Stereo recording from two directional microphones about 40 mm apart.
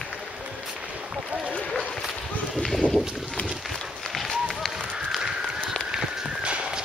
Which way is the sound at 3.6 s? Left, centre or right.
Centre.